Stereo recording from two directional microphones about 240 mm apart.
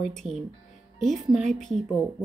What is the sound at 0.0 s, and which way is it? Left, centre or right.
A woman's voice, centre.